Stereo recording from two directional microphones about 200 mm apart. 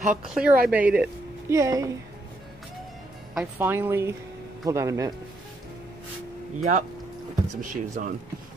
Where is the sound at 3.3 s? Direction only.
10° right (ahead or behind).